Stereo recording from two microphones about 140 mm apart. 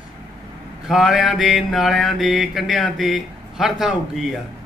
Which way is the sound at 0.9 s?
Centre (ahead or behind).